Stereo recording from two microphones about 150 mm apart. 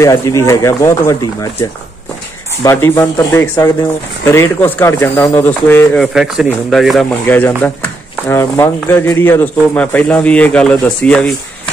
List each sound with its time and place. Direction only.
0.0 s speech: 20° left (ahead or behind)
5.9 s speech: centre (ahead or behind)
7.2 s speech: 10° left (ahead or behind)